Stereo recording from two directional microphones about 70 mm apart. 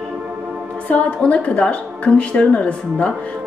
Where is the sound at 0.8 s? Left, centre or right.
Centre.